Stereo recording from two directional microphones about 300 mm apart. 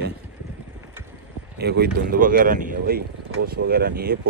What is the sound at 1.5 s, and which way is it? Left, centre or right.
Speech, right.